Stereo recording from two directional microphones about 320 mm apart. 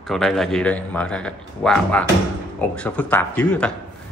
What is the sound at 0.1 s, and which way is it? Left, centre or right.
A man's voice, centre.